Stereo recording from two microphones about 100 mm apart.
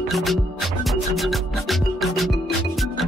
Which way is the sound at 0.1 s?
Centre (ahead or behind).